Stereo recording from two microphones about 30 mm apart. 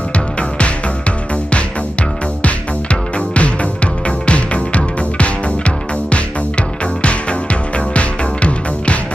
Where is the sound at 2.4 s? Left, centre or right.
Left.